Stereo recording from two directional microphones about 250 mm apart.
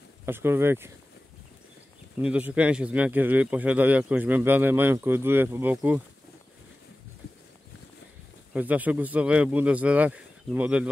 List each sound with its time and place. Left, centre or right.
0.2 s speech: centre
2.2 s speech: centre
8.5 s speech: centre